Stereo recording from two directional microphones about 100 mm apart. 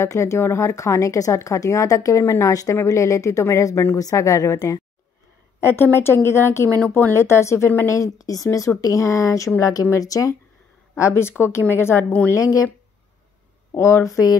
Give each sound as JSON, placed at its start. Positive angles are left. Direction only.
{"t": 0.0, "sound": "a woman's voice", "side_deg": 30}
{"t": 12.4, "sound": "a woman's voice", "side_deg": 35}
{"t": 13.7, "sound": "a woman's voice", "side_deg": 30}